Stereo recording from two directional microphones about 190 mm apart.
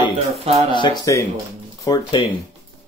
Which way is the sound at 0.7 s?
25° left (ahead or behind).